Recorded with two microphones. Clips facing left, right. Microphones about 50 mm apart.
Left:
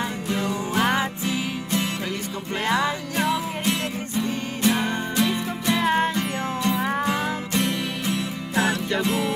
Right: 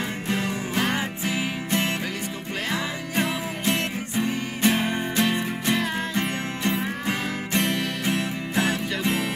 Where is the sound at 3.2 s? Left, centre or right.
Right.